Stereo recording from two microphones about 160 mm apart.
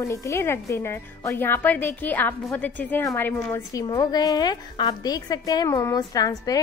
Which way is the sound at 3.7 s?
20° left (ahead or behind).